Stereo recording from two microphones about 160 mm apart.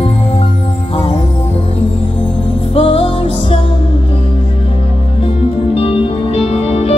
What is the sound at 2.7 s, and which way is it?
Music, 35° left (ahead or behind).